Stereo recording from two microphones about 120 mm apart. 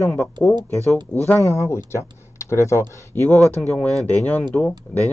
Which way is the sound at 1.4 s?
25° left (ahead or behind).